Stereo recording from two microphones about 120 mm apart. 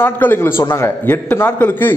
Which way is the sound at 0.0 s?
15° left (ahead or behind).